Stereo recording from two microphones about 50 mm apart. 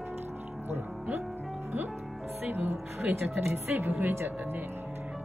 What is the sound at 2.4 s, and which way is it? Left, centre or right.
Music, right.